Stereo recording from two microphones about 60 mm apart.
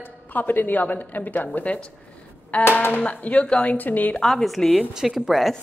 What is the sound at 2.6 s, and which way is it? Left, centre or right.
Speech, left.